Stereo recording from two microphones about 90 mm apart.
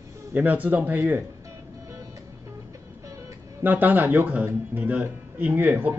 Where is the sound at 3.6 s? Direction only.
20° right (ahead or behind).